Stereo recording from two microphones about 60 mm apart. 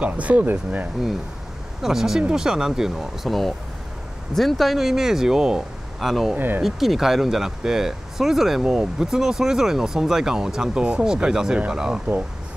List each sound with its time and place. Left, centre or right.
0.0 s speech: right
1.8 s speech: centre
6.3 s speech: right
6.6 s speech: centre